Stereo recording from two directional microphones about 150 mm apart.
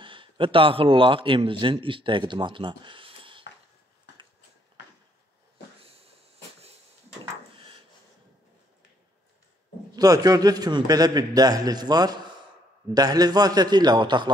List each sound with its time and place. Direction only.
0.0 s a man's voice: 35° right (ahead or behind)
5.8 s a sound: 40° right (ahead or behind)
9.9 s a man's voice: 25° right (ahead or behind)